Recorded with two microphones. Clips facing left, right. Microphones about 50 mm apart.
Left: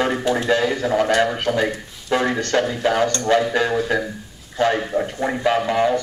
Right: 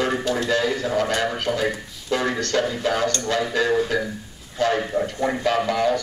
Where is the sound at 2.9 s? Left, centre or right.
Left.